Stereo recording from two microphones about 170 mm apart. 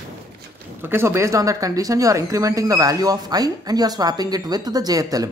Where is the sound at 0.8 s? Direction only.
15° right (ahead or behind).